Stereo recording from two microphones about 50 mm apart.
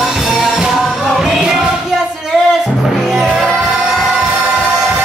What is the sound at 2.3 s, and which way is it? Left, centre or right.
Music, centre.